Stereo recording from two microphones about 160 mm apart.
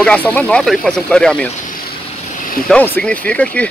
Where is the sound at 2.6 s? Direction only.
10° left (ahead or behind).